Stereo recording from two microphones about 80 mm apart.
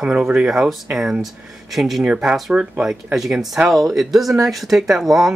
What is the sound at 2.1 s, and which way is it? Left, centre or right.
Speech, centre.